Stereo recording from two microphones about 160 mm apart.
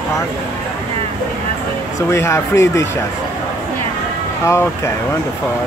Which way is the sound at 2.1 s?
15° left (ahead or behind).